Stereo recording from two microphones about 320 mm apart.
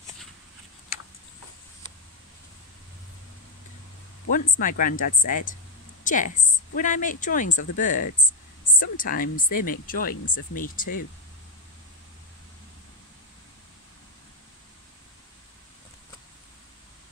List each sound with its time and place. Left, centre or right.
4.3 s a woman's voice: left